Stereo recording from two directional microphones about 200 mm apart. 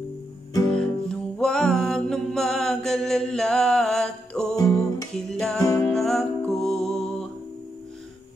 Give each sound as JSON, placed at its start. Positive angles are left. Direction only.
{"t": 0.7, "sound": "music", "side_deg": 5}
{"t": 5.6, "sound": "music", "side_deg": 15}
{"t": 5.9, "sound": "music", "side_deg": 0}